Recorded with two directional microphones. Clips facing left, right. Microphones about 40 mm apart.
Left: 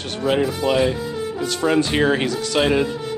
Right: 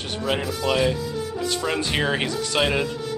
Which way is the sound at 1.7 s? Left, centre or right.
Centre.